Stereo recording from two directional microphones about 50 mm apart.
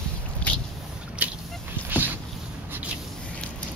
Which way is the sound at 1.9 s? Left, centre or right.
Right.